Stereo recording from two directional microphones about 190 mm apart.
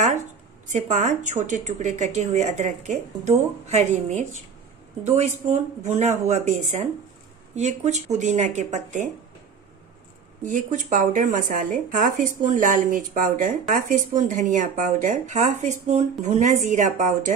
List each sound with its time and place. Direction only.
0.7 s speech: 40° right (ahead or behind)
10.4 s speech: 40° right (ahead or behind)